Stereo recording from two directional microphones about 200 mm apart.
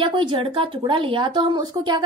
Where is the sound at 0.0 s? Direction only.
25° right (ahead or behind).